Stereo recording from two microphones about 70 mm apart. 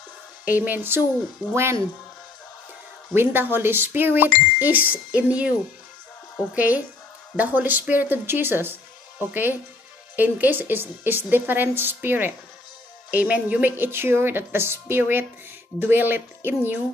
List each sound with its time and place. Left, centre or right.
0.5 s speech: right
3.2 s speech: right
6.5 s speech: right